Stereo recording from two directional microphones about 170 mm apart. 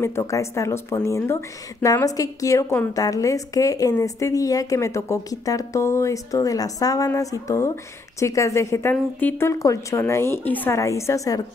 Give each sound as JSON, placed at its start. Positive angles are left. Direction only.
{"t": 0.0, "sound": "a woman's voice", "side_deg": 15}